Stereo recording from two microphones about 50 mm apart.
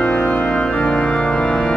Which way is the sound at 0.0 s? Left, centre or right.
Centre.